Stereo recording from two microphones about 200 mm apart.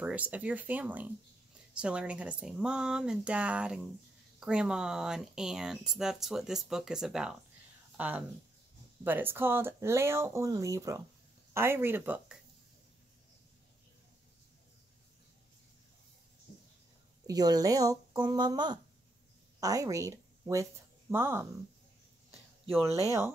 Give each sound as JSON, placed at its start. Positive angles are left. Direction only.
{"t": 0.0, "sound": "speech", "side_deg": -5}
{"t": 17.3, "sound": "speech", "side_deg": -20}
{"t": 22.8, "sound": "speech", "side_deg": 15}